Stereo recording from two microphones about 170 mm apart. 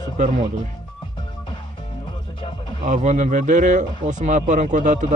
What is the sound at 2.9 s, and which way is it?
Speech, 45° right (ahead or behind).